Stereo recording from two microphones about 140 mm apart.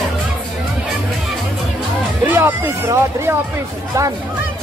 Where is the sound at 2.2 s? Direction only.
15° right (ahead or behind).